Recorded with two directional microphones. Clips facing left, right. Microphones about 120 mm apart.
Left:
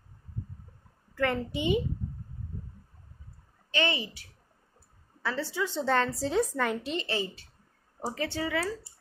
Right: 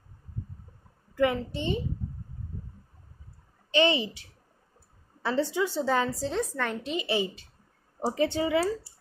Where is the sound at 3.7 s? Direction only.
20° right (ahead or behind).